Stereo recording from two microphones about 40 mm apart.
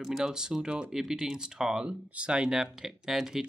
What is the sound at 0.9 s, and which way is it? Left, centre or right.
Speech, centre.